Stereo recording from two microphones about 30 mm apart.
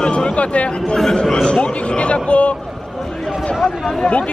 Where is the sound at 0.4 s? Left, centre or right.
Left.